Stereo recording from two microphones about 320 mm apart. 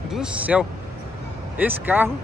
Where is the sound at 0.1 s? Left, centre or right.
Centre.